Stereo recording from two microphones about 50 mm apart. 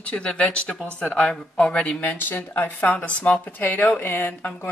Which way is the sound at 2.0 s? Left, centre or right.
Left.